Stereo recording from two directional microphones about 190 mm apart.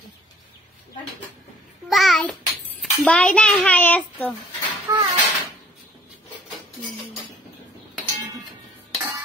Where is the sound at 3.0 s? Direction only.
5° left (ahead or behind).